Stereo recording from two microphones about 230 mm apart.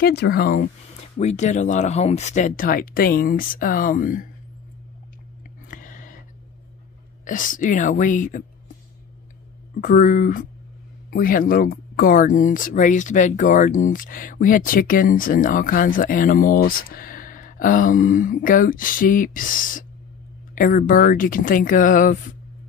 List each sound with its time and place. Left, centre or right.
0.0 s speech: left
5.7 s a sound: left
7.2 s speech: left
9.8 s speech: left